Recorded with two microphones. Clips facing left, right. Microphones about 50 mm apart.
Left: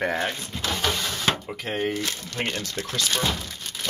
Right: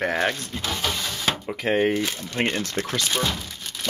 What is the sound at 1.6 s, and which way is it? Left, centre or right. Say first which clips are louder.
Speech: right 6 dB; right.